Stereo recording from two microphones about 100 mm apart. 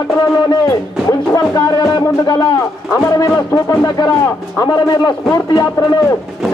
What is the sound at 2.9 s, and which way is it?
A man's voice, 25° left (ahead or behind).